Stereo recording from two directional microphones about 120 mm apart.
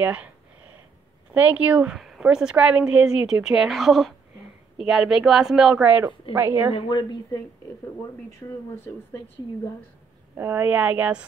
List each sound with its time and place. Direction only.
0.0 s a woman's voice: 10° right (ahead or behind)
1.3 s a woman's voice: 10° right (ahead or behind)
6.3 s speech: 20° right (ahead or behind)
6.7 s a woman's voice: 45° left (ahead or behind)
10.3 s a woman's voice: 20° right (ahead or behind)